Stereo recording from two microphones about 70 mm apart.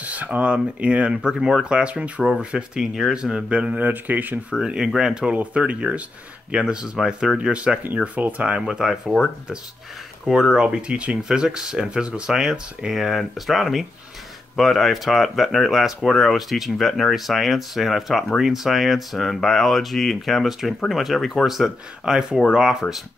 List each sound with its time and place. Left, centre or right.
0.0 s speech: right
4.6 s speech: centre
10.2 s speech: centre